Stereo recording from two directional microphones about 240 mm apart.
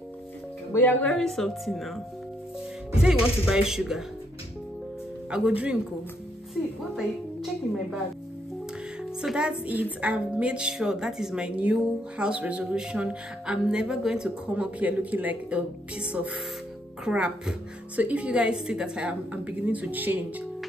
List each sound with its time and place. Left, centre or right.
0.7 s a woman's voice: centre
3.0 s a woman's voice: centre
5.3 s a woman's voice: centre
6.5 s a woman's voice: centre
9.2 s a woman's voice: centre